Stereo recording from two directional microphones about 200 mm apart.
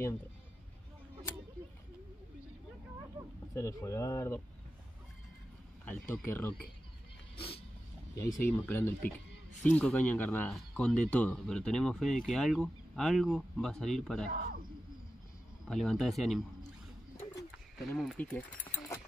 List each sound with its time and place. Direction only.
3.5 s speech: 15° left (ahead or behind)
5.9 s speech: 10° left (ahead or behind)
7.3 s a sound: 30° left (ahead or behind)
8.5 s speech: 10° left (ahead or behind)
14.3 s speech: 50° right (ahead or behind)
15.7 s speech: centre (ahead or behind)
17.7 s speech: centre (ahead or behind)